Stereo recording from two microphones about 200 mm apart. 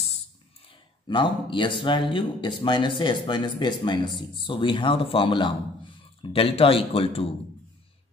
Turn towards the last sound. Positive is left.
turn(degrees=30)  # may be behind; listen again after turning